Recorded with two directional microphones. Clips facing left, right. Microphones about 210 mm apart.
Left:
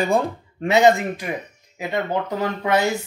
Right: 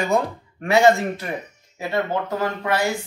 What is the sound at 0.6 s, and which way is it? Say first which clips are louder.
Speech: even; 20° left (ahead or behind).